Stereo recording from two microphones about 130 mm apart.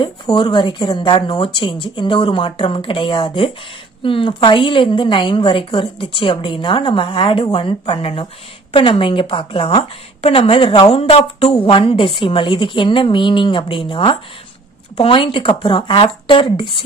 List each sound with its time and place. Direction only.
0.0 s a woman's voice: 35° left (ahead or behind)